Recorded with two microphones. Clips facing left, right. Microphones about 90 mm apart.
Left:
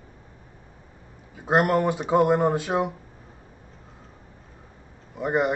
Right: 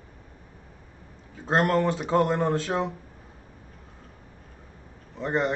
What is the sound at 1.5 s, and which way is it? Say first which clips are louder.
A man's voice: left 2 dB; 15° left (ahead or behind).